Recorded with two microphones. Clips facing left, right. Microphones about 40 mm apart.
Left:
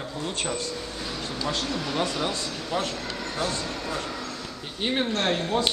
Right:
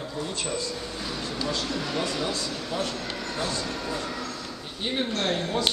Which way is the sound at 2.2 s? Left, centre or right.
Left.